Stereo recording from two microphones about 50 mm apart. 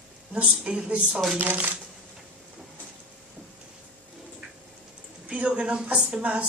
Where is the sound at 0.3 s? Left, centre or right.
Right.